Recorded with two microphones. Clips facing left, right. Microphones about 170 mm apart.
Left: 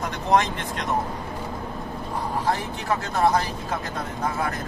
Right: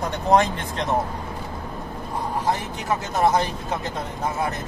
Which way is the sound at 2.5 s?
20° right (ahead or behind).